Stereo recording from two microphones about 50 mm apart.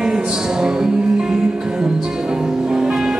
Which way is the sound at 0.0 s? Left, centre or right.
Centre.